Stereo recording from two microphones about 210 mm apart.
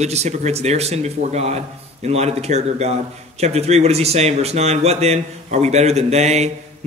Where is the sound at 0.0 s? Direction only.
30° right (ahead or behind).